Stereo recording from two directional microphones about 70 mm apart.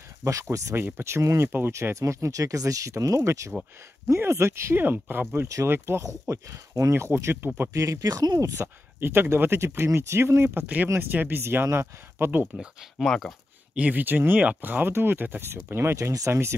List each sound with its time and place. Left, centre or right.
0.2 s speech: right
0.7 s speech: right
6.9 s speech: right
7.7 s speech: right
8.5 s speech: right
12.5 s speech: centre
13.0 s speech: centre
13.7 s speech: right
16.0 s speech: right